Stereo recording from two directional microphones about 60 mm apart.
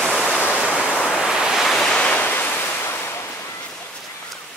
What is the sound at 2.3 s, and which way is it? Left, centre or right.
Waves, left.